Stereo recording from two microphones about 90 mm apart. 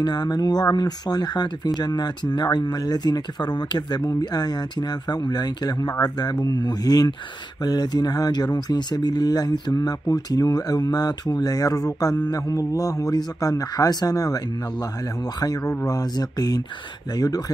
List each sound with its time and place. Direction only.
0.0 s speech: 50° left (ahead or behind)